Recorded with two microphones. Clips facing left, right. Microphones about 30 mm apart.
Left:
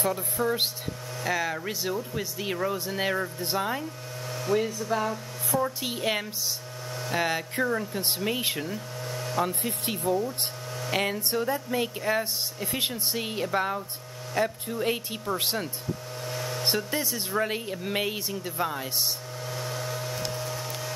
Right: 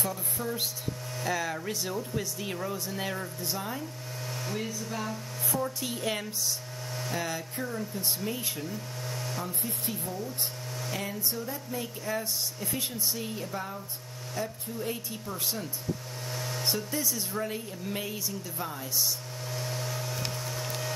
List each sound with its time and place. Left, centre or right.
0.0 s speech: left
1.2 s speech: centre; by 8.6 s left
9.1 s vehicle: left
9.4 s a woman's voice: left
16.3 s a sound: centre
16.6 s speech: left
19.5 s a sound: left; by 20.9 s centre